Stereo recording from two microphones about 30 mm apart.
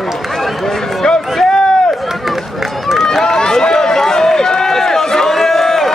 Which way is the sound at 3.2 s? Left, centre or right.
Centre.